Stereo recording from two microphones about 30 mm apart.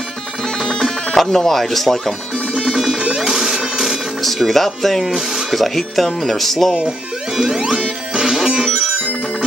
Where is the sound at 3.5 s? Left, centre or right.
Centre.